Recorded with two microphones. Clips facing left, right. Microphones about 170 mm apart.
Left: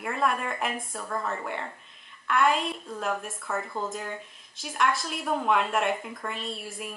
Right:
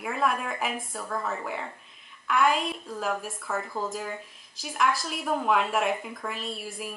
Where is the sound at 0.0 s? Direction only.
Centre (ahead or behind).